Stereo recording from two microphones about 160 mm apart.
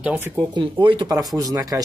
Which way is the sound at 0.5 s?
30° right (ahead or behind).